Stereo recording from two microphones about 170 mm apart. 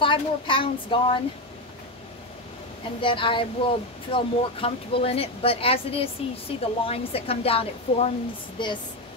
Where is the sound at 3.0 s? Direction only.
30° left (ahead or behind).